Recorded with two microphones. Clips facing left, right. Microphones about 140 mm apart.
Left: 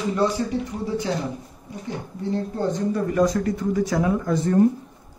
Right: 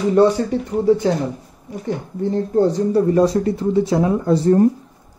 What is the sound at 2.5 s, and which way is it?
Speech, 35° right (ahead or behind).